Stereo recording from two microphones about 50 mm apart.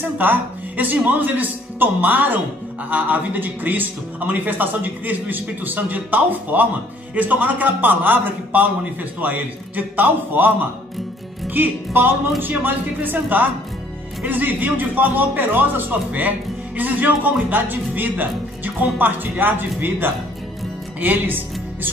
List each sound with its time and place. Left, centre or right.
0.2 s a man's voice: right